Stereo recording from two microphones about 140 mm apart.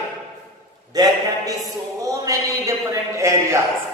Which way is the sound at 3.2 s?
20° right (ahead or behind).